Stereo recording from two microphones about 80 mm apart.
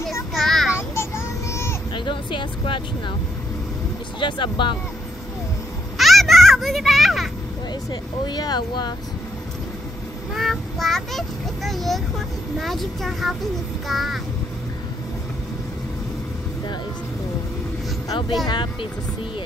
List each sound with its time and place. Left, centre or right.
0.3 s child singing: centre
0.7 s child singing: left
2.0 s speech: left
4.2 s speech: left
5.9 s a sound: centre
7.9 s speech: left
10.3 s a child's voice: centre
18.1 s speech: left